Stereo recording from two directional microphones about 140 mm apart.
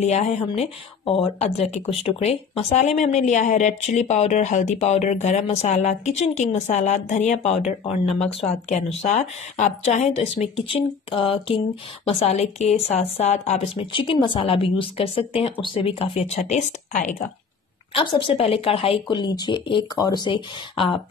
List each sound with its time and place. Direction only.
0.0 s speech: 55° left (ahead or behind)
0.5 s speech: 40° left (ahead or behind); by 17.1 s 60° left (ahead or behind)
17.9 s a woman's voice: 40° left (ahead or behind)